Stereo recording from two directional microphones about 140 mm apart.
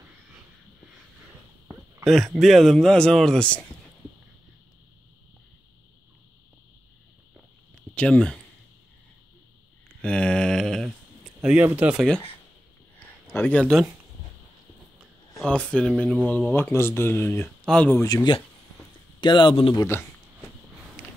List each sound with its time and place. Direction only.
2.0 s speech: centre (ahead or behind)
7.3 s a sound: 10° left (ahead or behind)
10.0 s a sound: 5° left (ahead or behind)
11.4 s speech: 10° right (ahead or behind)
13.3 s speech: 10° left (ahead or behind)
15.0 s speech: 5° left (ahead or behind)
16.5 s speech: 15° left (ahead or behind)
17.6 s speech: 5° left (ahead or behind)
18.0 s speech: 25° left (ahead or behind)
19.2 s speech: 35° left (ahead or behind)
19.8 s speech: 20° left (ahead or behind)
21.0 s a sound: 15° left (ahead or behind)